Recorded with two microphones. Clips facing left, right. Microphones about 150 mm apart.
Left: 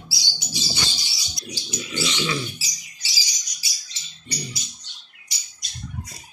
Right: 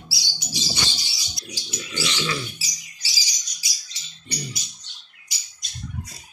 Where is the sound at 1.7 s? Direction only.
5° right (ahead or behind).